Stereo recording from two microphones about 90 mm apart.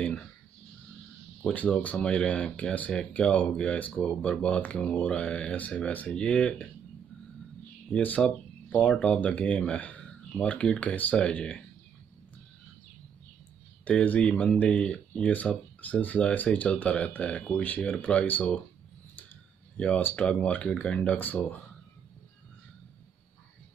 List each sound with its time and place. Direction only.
1.4 s speech: 15° left (ahead or behind)
7.9 s speech: 15° left (ahead or behind)
13.8 s speech: 15° left (ahead or behind)
19.8 s speech: 15° left (ahead or behind)